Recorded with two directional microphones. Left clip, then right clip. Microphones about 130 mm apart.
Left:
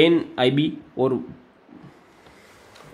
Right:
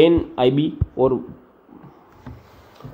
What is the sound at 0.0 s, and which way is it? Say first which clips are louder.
Speech: right 3 dB; 5° left (ahead or behind).